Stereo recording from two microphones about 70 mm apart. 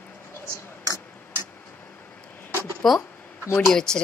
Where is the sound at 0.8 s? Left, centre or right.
Right.